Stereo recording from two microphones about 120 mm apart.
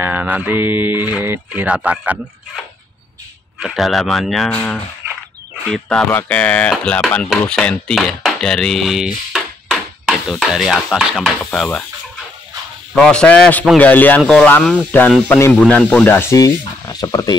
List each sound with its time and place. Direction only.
0.0 s speech: 15° right (ahead or behind)
3.5 s speech: centre (ahead or behind)
4.5 s speech: 15° left (ahead or behind)
7.2 s a sound: 5° left (ahead or behind)
12.9 s speech: 5° left (ahead or behind)
15.7 s speech: 10° left (ahead or behind)
16.3 s speech: 30° left (ahead or behind)